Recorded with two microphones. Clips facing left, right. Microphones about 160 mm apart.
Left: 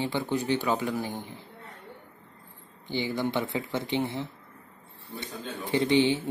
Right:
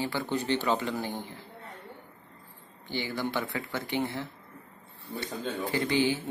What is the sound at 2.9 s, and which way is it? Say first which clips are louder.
A man's voice: left 3 dB; 20° left (ahead or behind).